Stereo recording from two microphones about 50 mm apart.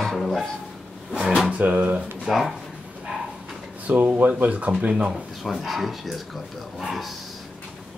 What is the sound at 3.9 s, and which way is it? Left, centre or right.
Speech, right.